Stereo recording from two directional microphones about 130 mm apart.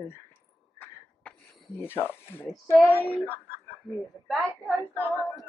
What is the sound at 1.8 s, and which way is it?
Speech, 15° left (ahead or behind).